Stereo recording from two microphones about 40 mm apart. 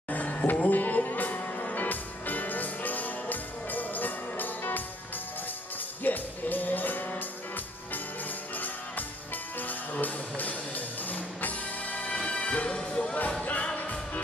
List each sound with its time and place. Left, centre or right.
0.1 s music: left
6.0 s music: left
13.4 s music: left